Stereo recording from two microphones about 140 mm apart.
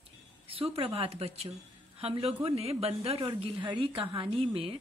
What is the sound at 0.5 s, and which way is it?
A woman's voice, 40° right (ahead or behind).